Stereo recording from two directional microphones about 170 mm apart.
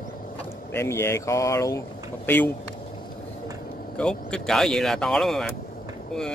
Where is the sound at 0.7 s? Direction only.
15° left (ahead or behind).